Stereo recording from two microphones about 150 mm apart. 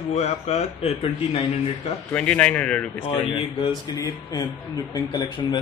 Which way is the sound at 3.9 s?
25° left (ahead or behind).